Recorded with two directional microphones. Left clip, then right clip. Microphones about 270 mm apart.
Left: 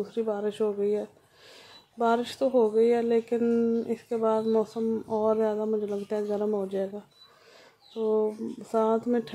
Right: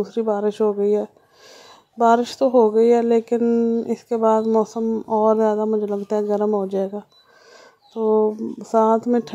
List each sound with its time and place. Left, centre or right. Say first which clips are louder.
0.0 s speech: right 8 dB; centre